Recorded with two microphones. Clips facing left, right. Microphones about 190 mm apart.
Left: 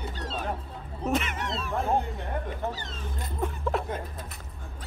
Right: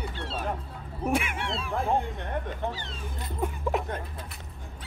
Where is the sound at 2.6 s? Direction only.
40° left (ahead or behind).